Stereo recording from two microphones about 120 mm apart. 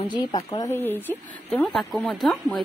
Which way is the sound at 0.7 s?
20° left (ahead or behind).